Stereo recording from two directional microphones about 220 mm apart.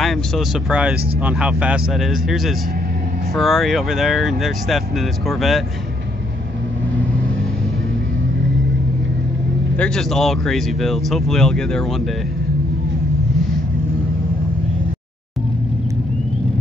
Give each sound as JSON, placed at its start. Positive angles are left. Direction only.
{"t": 0.0, "sound": "speech", "side_deg": 0}
{"t": 9.8, "sound": "speech", "side_deg": 5}